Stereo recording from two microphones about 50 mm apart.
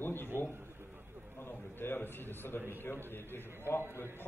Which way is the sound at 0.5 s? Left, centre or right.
Right.